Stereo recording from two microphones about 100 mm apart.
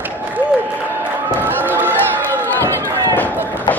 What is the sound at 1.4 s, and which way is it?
Run, 20° right (ahead or behind).